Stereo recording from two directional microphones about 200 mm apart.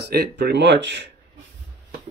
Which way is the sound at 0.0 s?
55° right (ahead or behind).